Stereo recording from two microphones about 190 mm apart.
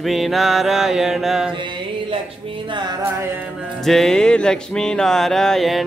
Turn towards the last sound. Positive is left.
turn(degrees=0)  # may be behind; listen again after turning